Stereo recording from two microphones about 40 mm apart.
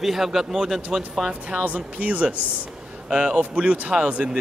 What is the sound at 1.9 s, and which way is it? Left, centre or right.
Speech, right.